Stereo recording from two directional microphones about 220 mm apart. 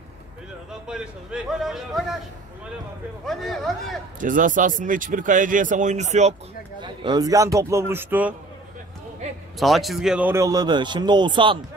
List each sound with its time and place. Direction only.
0.7 s a man's voice: 5° right (ahead or behind)
3.3 s a man's voice: centre (ahead or behind)
4.2 s speech: 35° right (ahead or behind)
6.8 s speech: 20° right (ahead or behind)
9.6 s speech: centre (ahead or behind); by 11.6 s 20° right (ahead or behind)